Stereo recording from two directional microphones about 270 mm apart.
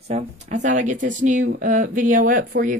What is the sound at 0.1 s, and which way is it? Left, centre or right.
Speech, right.